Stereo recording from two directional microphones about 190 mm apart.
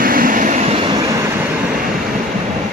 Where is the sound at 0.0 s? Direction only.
45° right (ahead or behind); by 1.0 s 25° right (ahead or behind).